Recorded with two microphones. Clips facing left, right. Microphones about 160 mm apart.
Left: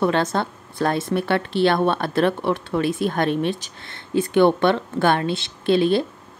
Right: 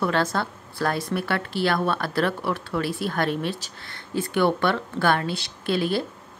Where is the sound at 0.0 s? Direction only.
20° left (ahead or behind).